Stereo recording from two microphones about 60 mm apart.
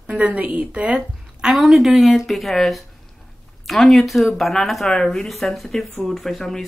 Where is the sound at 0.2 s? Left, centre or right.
Right.